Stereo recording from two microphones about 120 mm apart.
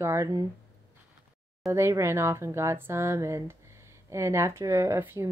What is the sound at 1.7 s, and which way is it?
Speech, 20° right (ahead or behind).